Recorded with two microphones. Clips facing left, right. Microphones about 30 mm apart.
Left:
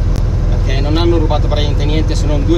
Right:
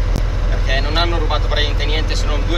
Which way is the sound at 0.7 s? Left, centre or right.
Centre.